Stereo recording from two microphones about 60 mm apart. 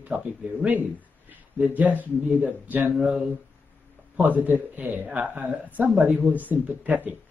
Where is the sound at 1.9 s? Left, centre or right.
Right.